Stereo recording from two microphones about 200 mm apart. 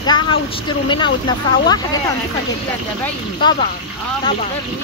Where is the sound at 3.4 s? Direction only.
25° left (ahead or behind).